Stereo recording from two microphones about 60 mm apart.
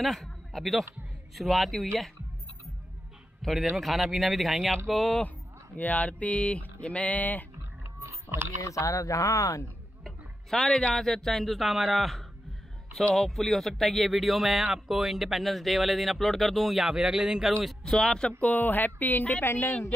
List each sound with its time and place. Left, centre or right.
0.0 s a man's voice: centre
3.4 s a man's voice: centre
5.8 s speech: left
8.0 s a sound: right
8.6 s speech: left
10.0 s a man's voice: centre
17.9 s speech: centre
18.4 s speech: left
19.4 s a woman's voice: left